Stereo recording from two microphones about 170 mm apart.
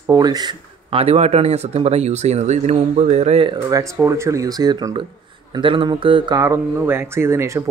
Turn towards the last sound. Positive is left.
turn(degrees=-15)  # may be behind; listen again after turning